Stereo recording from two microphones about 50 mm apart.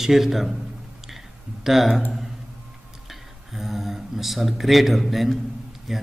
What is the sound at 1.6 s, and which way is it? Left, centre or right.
Speech, centre.